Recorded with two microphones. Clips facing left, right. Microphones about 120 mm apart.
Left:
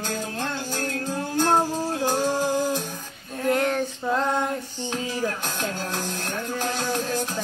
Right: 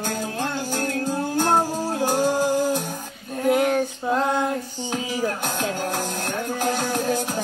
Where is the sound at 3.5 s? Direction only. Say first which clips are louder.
Right 3 dB; 10° right (ahead or behind).